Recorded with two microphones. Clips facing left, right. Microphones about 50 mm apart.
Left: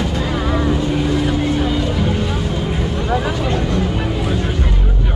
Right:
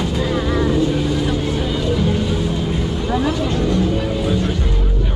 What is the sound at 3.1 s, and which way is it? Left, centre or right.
Vehicle, centre.